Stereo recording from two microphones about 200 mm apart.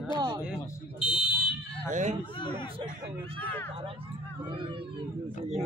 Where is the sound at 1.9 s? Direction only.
35° right (ahead or behind).